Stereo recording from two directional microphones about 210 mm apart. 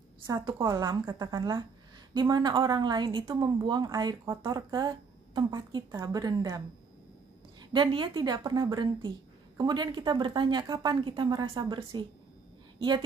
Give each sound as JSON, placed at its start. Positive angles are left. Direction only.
{"t": 0.3, "sound": "speech", "side_deg": -20}
{"t": 7.7, "sound": "speech", "side_deg": -25}